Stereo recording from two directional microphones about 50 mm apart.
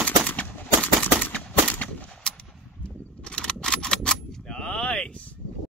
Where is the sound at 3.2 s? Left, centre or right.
Centre.